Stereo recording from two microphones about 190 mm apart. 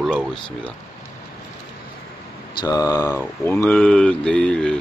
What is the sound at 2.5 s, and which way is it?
Mantra, 20° left (ahead or behind).